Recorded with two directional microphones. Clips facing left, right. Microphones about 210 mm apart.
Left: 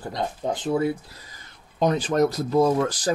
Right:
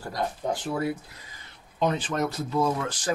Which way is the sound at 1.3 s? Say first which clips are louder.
Left 1 dB; 40° left (ahead or behind).